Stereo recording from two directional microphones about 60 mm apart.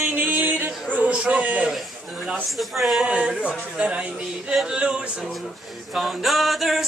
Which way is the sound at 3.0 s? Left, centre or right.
Centre.